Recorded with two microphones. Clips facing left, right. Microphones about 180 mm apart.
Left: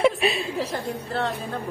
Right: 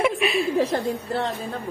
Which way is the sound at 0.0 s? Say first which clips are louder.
Even; 30° left (ahead or behind).